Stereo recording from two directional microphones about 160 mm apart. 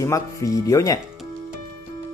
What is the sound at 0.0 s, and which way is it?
Speech, 20° left (ahead or behind).